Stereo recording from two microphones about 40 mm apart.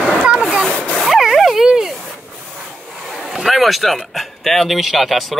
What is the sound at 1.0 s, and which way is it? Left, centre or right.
Dog, centre.